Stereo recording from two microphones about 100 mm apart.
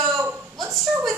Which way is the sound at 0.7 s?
Centre (ahead or behind).